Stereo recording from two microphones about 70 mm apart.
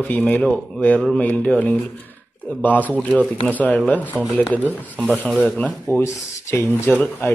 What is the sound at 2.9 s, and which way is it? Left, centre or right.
Speech, left.